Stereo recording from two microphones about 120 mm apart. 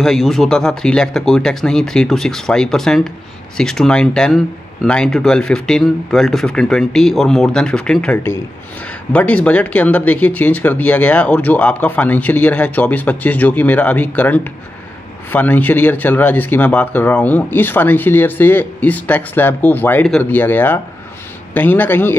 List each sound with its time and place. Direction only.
0.0 s speech: centre (ahead or behind); by 22.1 s 15° left (ahead or behind)